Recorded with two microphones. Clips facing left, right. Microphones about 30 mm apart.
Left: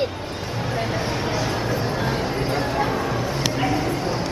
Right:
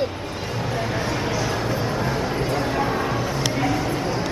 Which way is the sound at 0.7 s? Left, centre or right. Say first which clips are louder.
Even; centre.